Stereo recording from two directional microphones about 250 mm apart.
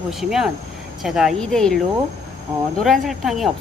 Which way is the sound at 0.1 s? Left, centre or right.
Centre.